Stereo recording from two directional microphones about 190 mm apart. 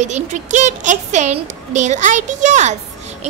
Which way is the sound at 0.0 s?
40° right (ahead or behind).